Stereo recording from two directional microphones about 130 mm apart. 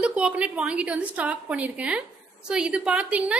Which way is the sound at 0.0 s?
10° right (ahead or behind).